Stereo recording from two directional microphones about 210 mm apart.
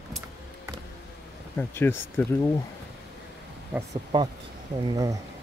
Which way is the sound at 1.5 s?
10° left (ahead or behind).